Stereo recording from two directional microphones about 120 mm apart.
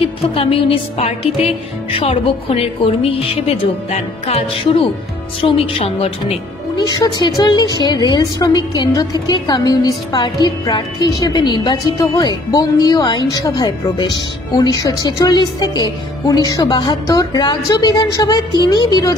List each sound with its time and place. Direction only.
0.3 s speech: 55° left (ahead or behind)
6.9 s a woman's voice: 35° left (ahead or behind)